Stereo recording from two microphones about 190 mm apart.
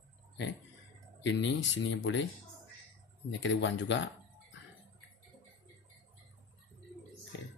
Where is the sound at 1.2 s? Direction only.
70° left (ahead or behind).